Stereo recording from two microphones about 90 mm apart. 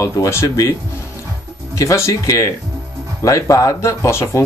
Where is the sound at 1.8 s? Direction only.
35° left (ahead or behind).